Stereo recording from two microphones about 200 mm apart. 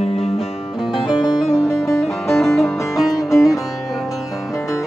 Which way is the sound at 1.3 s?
20° left (ahead or behind).